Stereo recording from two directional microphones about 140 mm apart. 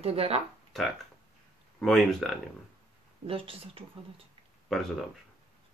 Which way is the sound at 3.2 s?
40° right (ahead or behind).